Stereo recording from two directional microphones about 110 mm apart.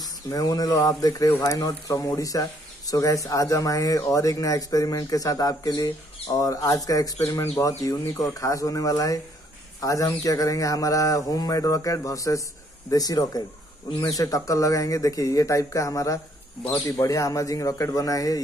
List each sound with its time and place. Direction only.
0.3 s speech: 35° left (ahead or behind)